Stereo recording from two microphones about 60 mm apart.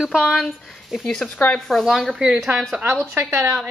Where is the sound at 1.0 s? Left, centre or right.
Centre.